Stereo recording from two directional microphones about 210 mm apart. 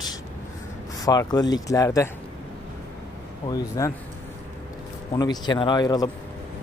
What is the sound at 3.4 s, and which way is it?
Speech, 15° left (ahead or behind).